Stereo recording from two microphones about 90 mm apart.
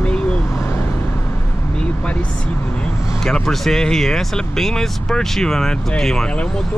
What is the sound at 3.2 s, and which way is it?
Speech, 5° left (ahead or behind).